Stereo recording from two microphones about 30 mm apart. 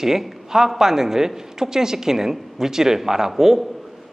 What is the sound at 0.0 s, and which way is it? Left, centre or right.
A man's voice, centre.